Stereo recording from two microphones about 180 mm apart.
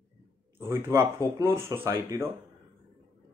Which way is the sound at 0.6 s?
15° right (ahead or behind).